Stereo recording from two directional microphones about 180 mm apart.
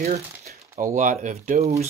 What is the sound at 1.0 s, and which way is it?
Speech, 45° right (ahead or behind).